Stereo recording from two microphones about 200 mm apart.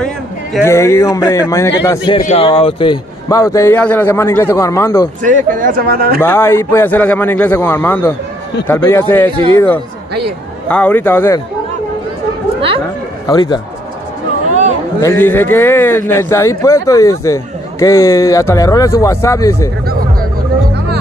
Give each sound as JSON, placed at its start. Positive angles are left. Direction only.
{"t": 0.0, "sound": "a sound", "side_deg": 0}
{"t": 0.7, "sound": "speech", "side_deg": 15}
{"t": 5.2, "sound": "speech", "side_deg": -40}
{"t": 6.2, "sound": "speech", "side_deg": 10}
{"t": 13.3, "sound": "speech", "side_deg": 20}
{"t": 15.0, "sound": "speech", "side_deg": 15}
{"t": 19.9, "sound": "a sound", "side_deg": -45}